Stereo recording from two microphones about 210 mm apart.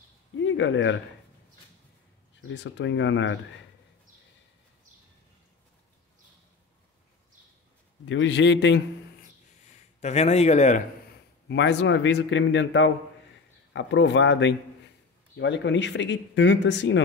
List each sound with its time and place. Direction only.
0.4 s speech: 60° left (ahead or behind)
2.4 s speech: 60° left (ahead or behind)
8.0 s speech: 60° left (ahead or behind)
9.9 s speech: 30° left (ahead or behind)
11.4 s speech: 55° left (ahead or behind)